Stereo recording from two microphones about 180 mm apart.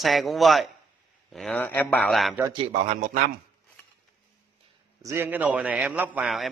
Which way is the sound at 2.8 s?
40° right (ahead or behind).